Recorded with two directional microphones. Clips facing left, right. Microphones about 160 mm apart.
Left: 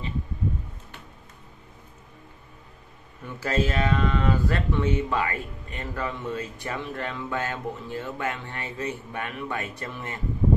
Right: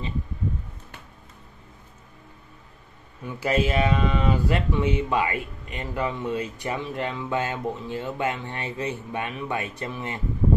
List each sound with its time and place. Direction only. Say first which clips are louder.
3.3 s speech: right 3 dB; 15° right (ahead or behind)